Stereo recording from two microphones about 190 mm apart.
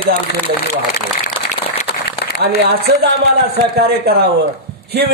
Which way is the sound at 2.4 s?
60° right (ahead or behind).